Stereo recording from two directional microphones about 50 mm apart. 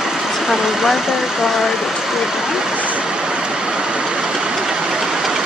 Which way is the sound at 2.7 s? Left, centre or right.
Right.